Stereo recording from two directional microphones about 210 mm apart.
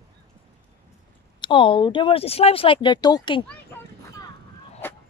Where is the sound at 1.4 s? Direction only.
25° left (ahead or behind).